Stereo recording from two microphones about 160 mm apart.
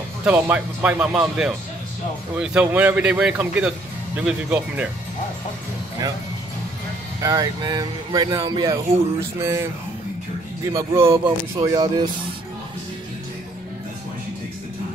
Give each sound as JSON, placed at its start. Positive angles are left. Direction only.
{"t": 0.2, "sound": "speech", "side_deg": -10}
{"t": 7.2, "sound": "speech", "side_deg": -25}